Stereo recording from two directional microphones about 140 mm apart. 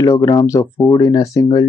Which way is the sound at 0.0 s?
25° left (ahead or behind).